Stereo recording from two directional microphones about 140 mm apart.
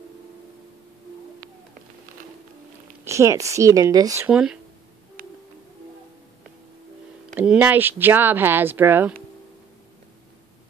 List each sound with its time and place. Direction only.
3.1 s speech: 20° right (ahead or behind)
4.3 s speech: 5° right (ahead or behind)
7.3 s speech: 15° right (ahead or behind)